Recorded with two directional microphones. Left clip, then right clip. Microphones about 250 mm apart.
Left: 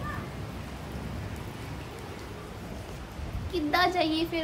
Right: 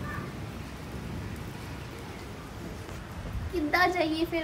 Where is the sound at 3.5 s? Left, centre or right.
Centre.